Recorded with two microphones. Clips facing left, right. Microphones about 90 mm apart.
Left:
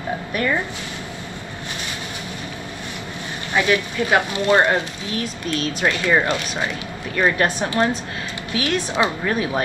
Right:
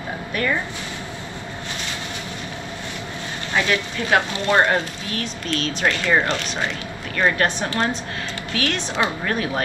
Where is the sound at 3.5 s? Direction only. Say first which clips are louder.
Left 3 dB; 20° left (ahead or behind).